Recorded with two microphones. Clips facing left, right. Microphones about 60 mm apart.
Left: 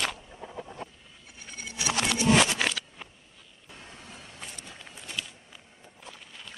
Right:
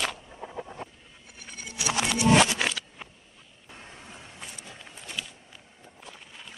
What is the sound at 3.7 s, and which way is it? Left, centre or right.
Vehicle, right.